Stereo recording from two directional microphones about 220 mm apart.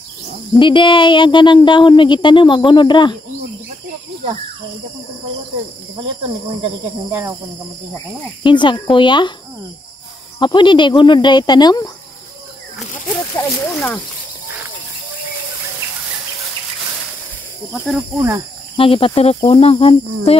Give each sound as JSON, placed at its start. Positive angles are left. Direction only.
{"t": 0.6, "sound": "speech", "side_deg": 20}
{"t": 5.9, "sound": "speech", "side_deg": -25}
{"t": 7.1, "sound": "cricket", "side_deg": -10}
{"t": 8.5, "sound": "speech", "side_deg": 20}
{"t": 10.4, "sound": "speech", "side_deg": 20}
{"t": 13.4, "sound": "a sound", "side_deg": 10}
{"t": 17.7, "sound": "speech", "side_deg": 0}
{"t": 18.8, "sound": "speech", "side_deg": 25}